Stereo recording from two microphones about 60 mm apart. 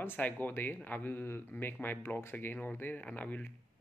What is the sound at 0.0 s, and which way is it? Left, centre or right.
Speech, left.